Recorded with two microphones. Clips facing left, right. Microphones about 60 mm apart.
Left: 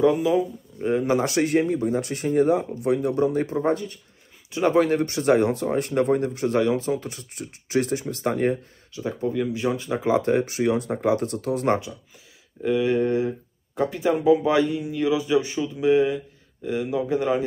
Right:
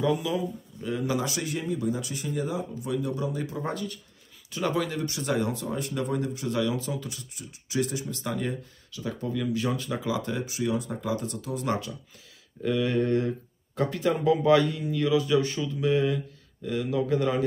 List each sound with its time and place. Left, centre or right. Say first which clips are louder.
0.0 s speech: left 7 dB; left
1.2 s speech: left 10 dB; left
4.8 s speech: left 9 dB; left
7.3 s speech: left 5 dB; left
8.9 s speech: left 6 dB; left
10.0 s speech: left 12 dB; left
12.6 s speech: left 4 dB; centre